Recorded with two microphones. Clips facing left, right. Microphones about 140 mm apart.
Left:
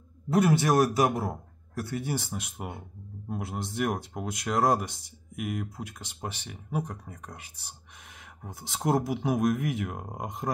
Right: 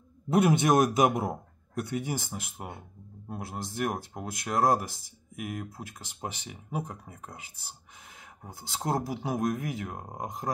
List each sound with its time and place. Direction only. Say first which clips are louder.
0.5 s speech: even; 20° right (ahead or behind)
3.3 s speech: left 3 dB; centre (ahead or behind)